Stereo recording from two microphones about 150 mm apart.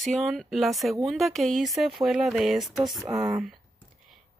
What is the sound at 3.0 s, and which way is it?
Speech, 20° right (ahead or behind).